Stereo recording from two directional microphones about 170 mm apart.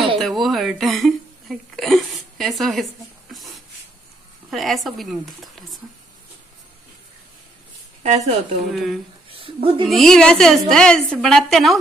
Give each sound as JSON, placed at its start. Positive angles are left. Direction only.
{"t": 0.2, "sound": "a woman's voice", "side_deg": 0}
{"t": 8.0, "sound": "a woman's voice", "side_deg": -40}
{"t": 8.7, "sound": "a woman's voice", "side_deg": 0}
{"t": 9.3, "sound": "speech", "side_deg": -35}
{"t": 9.8, "sound": "a woman's voice", "side_deg": 0}